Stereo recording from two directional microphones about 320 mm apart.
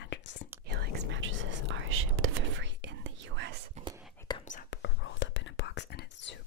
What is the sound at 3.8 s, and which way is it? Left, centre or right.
Whispering, right.